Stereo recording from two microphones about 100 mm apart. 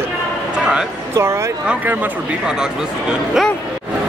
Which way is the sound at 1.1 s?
30° right (ahead or behind).